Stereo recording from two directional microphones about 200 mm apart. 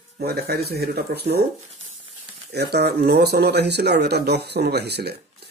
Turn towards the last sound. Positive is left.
turn(degrees=-55)  # may be behind; listen again after turning